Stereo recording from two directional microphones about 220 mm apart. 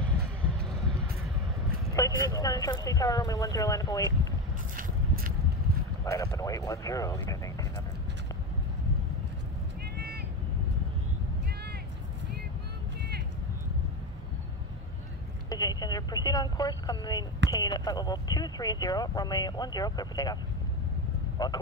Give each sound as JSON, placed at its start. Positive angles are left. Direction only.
{"t": 2.0, "sound": "speech", "side_deg": 15}
{"t": 4.7, "sound": "biting", "side_deg": -40}
{"t": 6.0, "sound": "speech", "side_deg": 15}
{"t": 9.9, "sound": "vehicle", "side_deg": -45}
{"t": 15.5, "sound": "speech", "side_deg": 15}
{"t": 21.4, "sound": "speech", "side_deg": 20}